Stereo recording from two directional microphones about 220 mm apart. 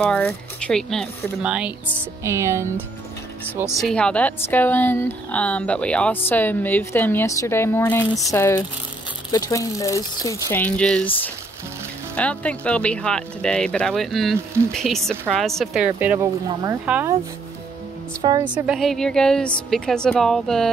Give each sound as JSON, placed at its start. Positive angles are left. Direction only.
{"t": 0.0, "sound": "a woman's voice", "side_deg": 5}
{"t": 3.8, "sound": "a woman's voice", "side_deg": 5}
{"t": 18.2, "sound": "a woman's voice", "side_deg": -20}
{"t": 18.5, "sound": "a woman's voice", "side_deg": 0}